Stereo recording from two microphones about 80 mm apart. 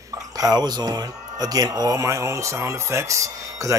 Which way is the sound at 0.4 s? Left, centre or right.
Right.